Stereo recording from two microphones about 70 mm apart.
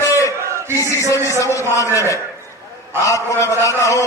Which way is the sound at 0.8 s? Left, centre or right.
Left.